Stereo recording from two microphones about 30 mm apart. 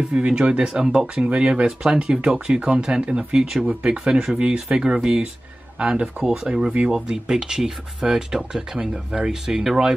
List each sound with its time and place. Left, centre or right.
0.1 s speech: right